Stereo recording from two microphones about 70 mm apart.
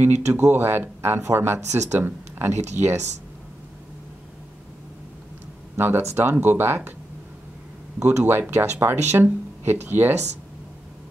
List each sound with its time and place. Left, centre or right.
0.0 s speech: right
5.8 s speech: right
8.2 s speech: right